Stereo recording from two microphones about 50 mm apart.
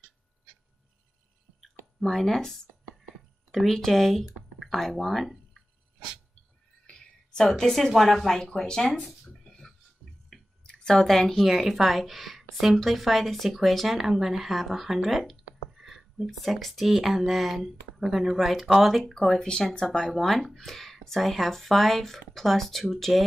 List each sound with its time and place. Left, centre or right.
2.0 s a woman's voice: centre
6.9 s speech: centre
8.4 s speech: centre
9.0 s speech: centre
9.4 s a sound: centre
10.0 s a sound: centre
10.6 s a sound: centre
11.0 s a woman's voice: centre
19.1 s speech: centre
20.1 s a woman's voice: centre